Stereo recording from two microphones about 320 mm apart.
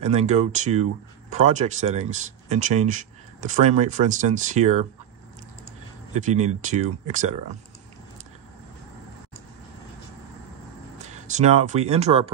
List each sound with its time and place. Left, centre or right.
0.0 s speech: right
6.1 s speech: right
11.0 s speech: right